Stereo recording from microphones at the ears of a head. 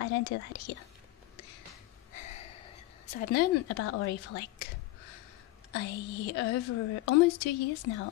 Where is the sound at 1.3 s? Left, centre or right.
Left.